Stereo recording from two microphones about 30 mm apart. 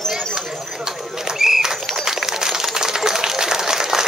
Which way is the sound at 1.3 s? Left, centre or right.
Centre.